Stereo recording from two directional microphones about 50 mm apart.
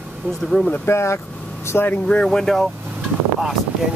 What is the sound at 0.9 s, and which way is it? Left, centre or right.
Speech, left.